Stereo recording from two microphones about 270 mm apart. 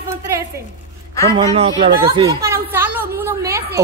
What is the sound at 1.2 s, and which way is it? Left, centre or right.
A woman's voice, centre.